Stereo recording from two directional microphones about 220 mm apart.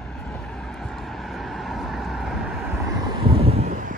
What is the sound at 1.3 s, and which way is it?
Vehicle, centre (ahead or behind).